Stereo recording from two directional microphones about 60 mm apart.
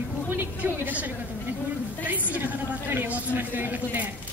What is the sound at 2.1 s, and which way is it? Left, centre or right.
A woman's voice, right.